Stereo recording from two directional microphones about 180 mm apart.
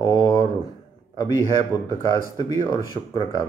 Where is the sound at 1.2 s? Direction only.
25° left (ahead or behind).